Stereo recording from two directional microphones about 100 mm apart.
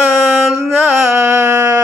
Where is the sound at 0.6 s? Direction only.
25° right (ahead or behind).